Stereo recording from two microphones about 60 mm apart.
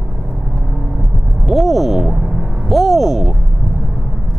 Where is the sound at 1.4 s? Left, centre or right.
Centre.